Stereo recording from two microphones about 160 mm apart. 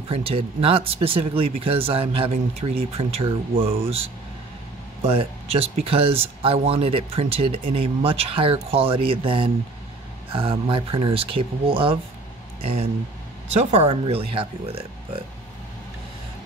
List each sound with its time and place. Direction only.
0.1 s speech: 35° right (ahead or behind)
13.6 s speech: 45° right (ahead or behind)